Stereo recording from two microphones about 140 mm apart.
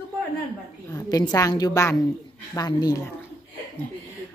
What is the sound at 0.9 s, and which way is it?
A woman's voice, 25° left (ahead or behind).